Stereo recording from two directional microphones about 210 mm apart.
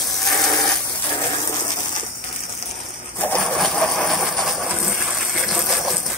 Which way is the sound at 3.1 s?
10° left (ahead or behind).